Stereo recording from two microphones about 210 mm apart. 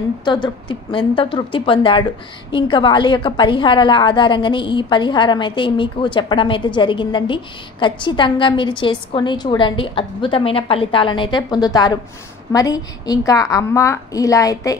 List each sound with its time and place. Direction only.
0.2 s a woman's voice: 20° left (ahead or behind)